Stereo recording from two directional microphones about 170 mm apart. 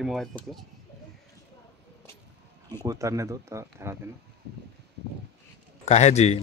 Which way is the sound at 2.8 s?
20° right (ahead or behind).